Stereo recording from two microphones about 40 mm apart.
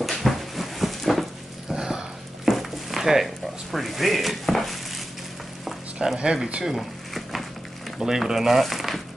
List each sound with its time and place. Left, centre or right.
0.0 s dog: centre
1.7 s a sound: centre
3.7 s speech: centre
6.1 s speech: right
6.6 s a sound: centre
8.0 s speech: centre